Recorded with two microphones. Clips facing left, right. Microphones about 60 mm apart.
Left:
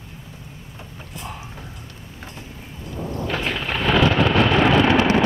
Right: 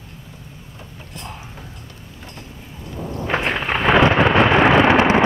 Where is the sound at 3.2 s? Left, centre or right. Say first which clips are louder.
Right 5 dB; right.